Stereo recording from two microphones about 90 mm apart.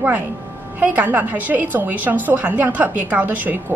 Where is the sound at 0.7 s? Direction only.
20° right (ahead or behind).